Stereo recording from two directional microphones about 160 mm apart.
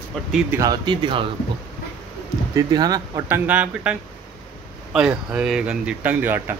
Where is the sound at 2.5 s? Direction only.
25° right (ahead or behind).